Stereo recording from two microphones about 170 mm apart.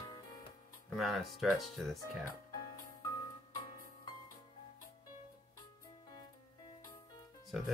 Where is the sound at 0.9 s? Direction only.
Centre (ahead or behind).